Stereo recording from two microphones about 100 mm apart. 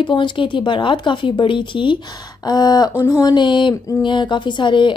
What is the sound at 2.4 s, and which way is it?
A woman's voice, 45° left (ahead or behind).